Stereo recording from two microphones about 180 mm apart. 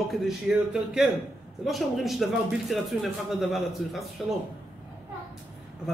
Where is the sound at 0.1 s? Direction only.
5° right (ahead or behind).